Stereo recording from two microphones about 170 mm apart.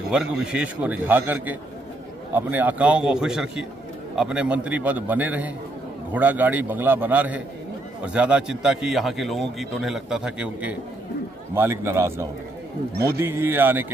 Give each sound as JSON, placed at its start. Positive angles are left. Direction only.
{"t": 0.1, "sound": "a man's voice", "side_deg": -5}
{"t": 12.9, "sound": "speech", "side_deg": -65}
{"t": 13.2, "sound": "a man's voice", "side_deg": -15}